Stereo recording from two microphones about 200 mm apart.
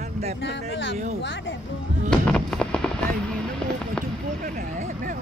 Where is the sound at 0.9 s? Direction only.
35° right (ahead or behind).